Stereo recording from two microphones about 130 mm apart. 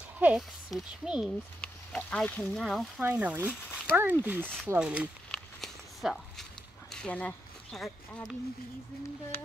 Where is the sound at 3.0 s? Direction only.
10° right (ahead or behind).